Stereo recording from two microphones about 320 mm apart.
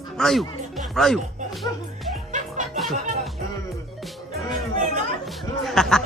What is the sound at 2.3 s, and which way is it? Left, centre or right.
Music, right.